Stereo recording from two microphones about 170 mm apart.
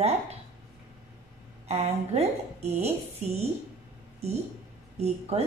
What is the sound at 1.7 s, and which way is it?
A woman's voice, 40° right (ahead or behind).